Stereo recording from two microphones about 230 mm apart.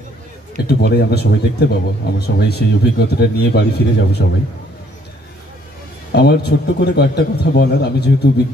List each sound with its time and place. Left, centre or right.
0.7 s speech: left
6.1 s speech: left